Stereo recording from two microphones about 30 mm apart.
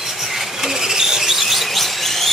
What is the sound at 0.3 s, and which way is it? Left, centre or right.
Vehicle, centre.